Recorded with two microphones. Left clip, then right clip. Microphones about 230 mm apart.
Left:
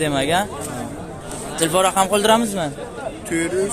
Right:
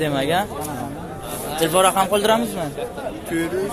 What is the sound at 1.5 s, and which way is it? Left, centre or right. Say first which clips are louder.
Speech: even; centre.